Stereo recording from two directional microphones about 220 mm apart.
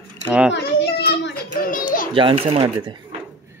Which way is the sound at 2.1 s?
25° right (ahead or behind).